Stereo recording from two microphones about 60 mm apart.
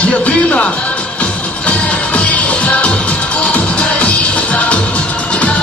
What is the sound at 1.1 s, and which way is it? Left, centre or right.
Music, left.